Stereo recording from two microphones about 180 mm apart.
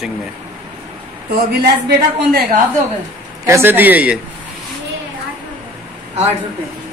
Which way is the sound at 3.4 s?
15° right (ahead or behind).